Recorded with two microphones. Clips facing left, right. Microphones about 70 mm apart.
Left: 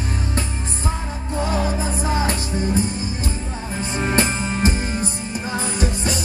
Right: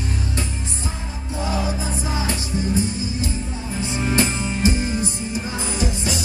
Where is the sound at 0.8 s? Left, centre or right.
Left.